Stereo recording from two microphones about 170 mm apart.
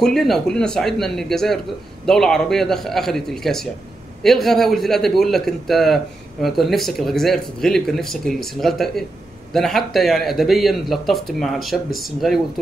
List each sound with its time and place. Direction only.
0.0 s speech: centre (ahead or behind)